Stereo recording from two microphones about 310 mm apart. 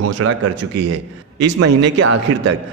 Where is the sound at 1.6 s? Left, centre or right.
Right.